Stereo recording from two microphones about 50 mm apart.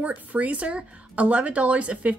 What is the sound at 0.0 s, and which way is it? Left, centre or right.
Speech, right.